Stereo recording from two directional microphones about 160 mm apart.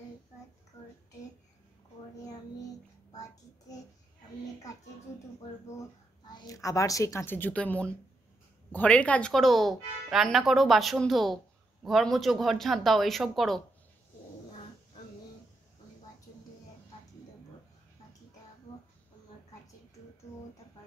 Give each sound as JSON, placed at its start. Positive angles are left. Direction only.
{"t": 2.2, "sound": "child singing", "side_deg": 25}
{"t": 6.2, "sound": "a woman's voice", "side_deg": 25}